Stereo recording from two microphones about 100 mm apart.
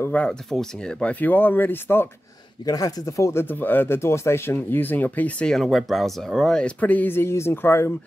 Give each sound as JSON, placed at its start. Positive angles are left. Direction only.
{"t": 0.1, "sound": "speech", "side_deg": 10}
{"t": 2.6, "sound": "speech", "side_deg": 40}